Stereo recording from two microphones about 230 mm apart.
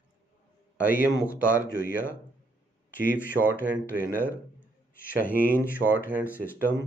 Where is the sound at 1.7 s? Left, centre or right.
Left.